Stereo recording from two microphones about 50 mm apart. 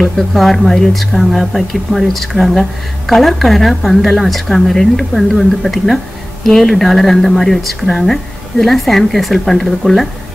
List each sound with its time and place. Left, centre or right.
0.0 s speech: centre